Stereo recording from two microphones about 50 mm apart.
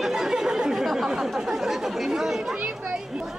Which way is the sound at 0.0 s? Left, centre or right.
Centre.